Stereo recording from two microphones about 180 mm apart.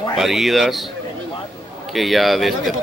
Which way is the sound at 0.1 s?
Centre (ahead or behind).